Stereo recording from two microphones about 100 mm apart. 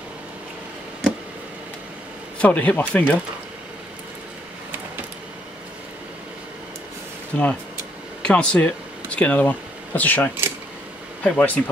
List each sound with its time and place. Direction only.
2.3 s speech: 15° left (ahead or behind)
7.3 s speech: 10° left (ahead or behind)